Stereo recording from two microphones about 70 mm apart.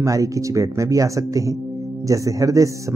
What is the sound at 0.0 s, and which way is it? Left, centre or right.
Speech, right.